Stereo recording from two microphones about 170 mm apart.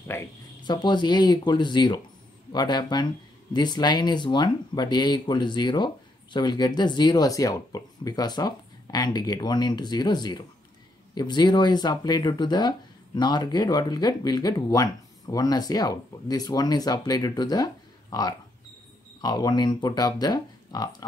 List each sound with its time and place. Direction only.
0.1 s speech: 15° left (ahead or behind)
0.7 s speech: 25° left (ahead or behind)
19.2 s speech: 25° left (ahead or behind)